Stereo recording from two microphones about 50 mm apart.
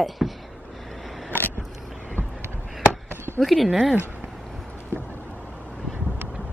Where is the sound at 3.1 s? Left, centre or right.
Right.